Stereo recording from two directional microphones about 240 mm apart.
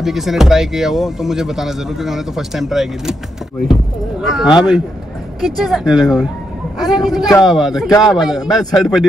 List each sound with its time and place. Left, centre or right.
0.0 s speech: centre
4.2 s speech: centre